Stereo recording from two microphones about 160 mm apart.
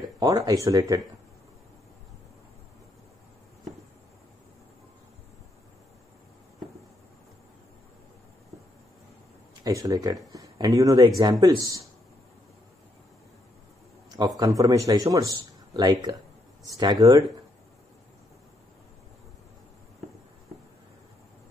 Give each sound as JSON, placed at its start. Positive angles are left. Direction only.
{"t": 0.2, "sound": "speech", "side_deg": -25}
{"t": 9.6, "sound": "speech", "side_deg": -20}
{"t": 14.1, "sound": "speech", "side_deg": -25}